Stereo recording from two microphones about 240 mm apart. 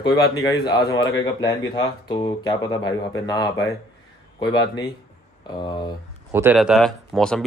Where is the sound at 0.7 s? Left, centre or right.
Centre.